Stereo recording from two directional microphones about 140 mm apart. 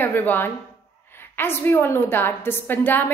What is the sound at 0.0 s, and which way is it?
A woman's voice, 15° left (ahead or behind).